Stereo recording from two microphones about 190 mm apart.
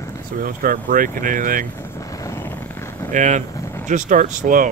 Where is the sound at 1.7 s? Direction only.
15° left (ahead or behind).